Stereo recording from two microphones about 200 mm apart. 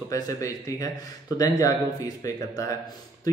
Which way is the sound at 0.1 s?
15° left (ahead or behind).